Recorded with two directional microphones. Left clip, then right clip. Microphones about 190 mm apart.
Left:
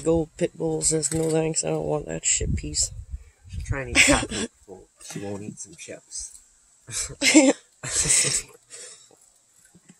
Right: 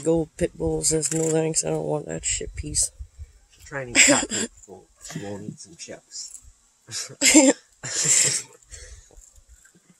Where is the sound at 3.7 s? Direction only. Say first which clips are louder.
Even; 35° left (ahead or behind).